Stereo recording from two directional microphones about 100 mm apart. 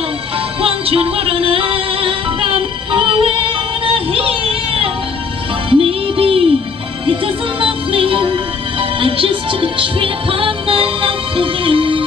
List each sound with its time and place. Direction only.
0.6 s music: 70° right (ahead or behind)